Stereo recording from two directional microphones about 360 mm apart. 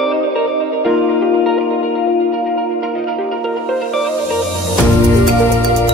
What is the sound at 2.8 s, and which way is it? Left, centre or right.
Music, centre.